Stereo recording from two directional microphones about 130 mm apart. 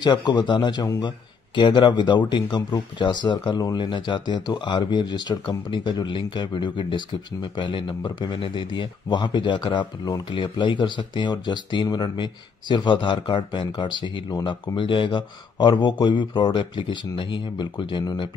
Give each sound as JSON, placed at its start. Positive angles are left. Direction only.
{"t": 0.0, "sound": "speech", "side_deg": 35}